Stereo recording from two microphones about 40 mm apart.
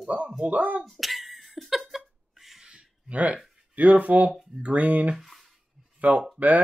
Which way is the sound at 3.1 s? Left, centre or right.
Right.